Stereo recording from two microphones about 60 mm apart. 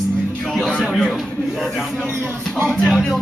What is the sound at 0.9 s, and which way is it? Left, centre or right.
Speech, centre.